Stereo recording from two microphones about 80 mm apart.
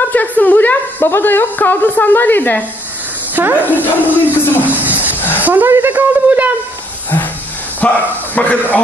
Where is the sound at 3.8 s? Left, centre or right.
Right.